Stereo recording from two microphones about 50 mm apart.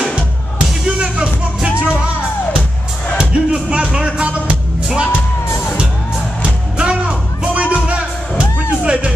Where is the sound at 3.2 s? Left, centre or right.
Centre.